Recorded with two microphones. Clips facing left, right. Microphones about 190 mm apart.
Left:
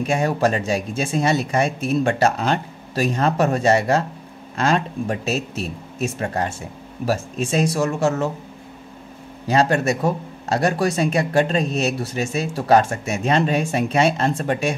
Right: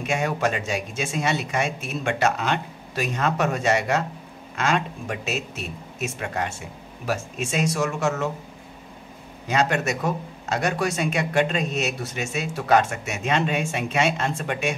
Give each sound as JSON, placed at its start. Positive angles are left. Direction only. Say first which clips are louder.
{"t": 0.0, "sound": "speech", "louder": "left 5 dB", "side_deg": 35}
{"t": 9.5, "sound": "speech", "louder": "left 5 dB", "side_deg": 35}